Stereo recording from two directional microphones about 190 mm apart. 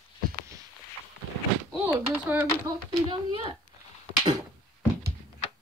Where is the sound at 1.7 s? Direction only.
10° right (ahead or behind).